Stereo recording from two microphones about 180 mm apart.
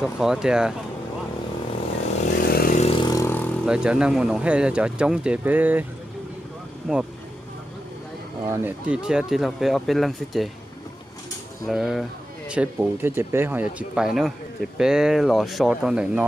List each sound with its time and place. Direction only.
0.0 s speech: 5° right (ahead or behind)
2.5 s vehicle: 50° left (ahead or behind)
2.8 s vehicle: 30° left (ahead or behind)
3.6 s speech: 5° right (ahead or behind)
6.9 s speech: 5° right (ahead or behind)
8.5 s speech: 10° right (ahead or behind)
11.6 s speech: centre (ahead or behind)